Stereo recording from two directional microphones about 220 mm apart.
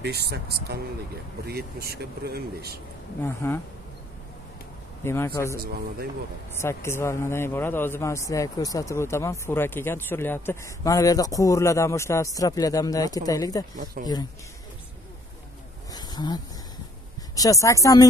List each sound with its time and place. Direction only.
0.0 s speech: 45° right (ahead or behind)
3.3 s a man's voice: 10° left (ahead or behind)
5.0 s a man's voice: 10° left (ahead or behind)
5.6 s speech: 45° right (ahead or behind)
6.5 s a man's voice: 10° left (ahead or behind)
14.0 s speech: 40° right (ahead or behind)
15.9 s a sound: 20° left (ahead or behind)
17.4 s a man's voice: 15° left (ahead or behind)